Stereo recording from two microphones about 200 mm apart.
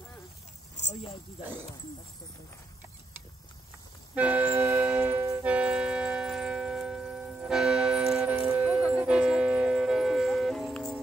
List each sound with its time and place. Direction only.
0.7 s snake: 35° left (ahead or behind)
4.1 s music: 5° right (ahead or behind)